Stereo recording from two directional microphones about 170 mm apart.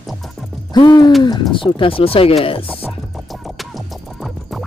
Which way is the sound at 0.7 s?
25° left (ahead or behind).